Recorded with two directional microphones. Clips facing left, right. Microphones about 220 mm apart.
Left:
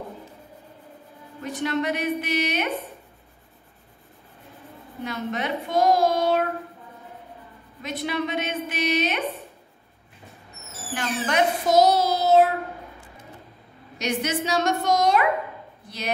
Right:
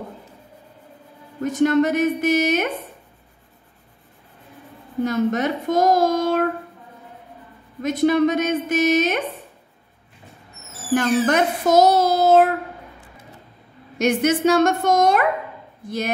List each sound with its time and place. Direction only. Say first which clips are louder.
1.4 s child singing: right 9 dB; 45° right (ahead or behind)
5.0 s a child's voice: right 8 dB; 45° right (ahead or behind)
7.8 s child singing: right 11 dB; 45° right (ahead or behind)
10.9 s child singing: right 10 dB; 45° right (ahead or behind)
13.9 s child singing: right 8 dB; 50° right (ahead or behind)